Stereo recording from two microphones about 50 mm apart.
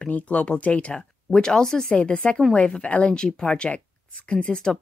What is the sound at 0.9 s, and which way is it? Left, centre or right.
Speech, centre.